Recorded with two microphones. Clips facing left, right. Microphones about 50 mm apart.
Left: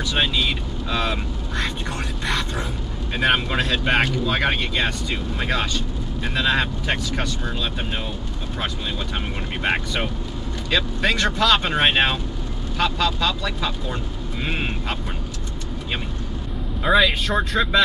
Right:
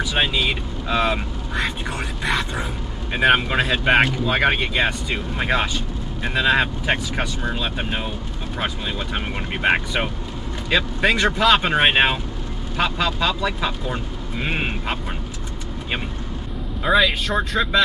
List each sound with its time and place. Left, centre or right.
0.0 s speech: centre
16.8 s speech: centre